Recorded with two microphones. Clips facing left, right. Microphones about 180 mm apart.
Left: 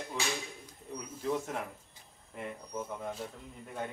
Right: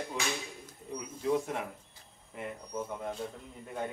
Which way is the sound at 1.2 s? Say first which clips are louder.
Right 3 dB; centre (ahead or behind).